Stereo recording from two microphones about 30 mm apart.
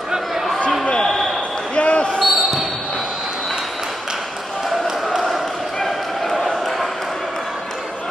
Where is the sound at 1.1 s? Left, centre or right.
Centre.